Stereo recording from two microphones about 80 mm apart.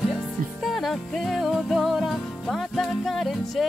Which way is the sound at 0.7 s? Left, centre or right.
Centre.